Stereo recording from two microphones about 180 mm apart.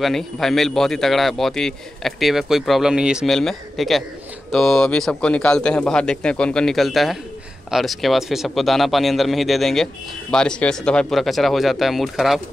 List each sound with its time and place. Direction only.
0.0 s speech: centre (ahead or behind)